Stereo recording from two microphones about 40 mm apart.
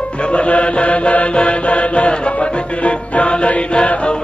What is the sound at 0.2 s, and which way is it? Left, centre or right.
Music, left.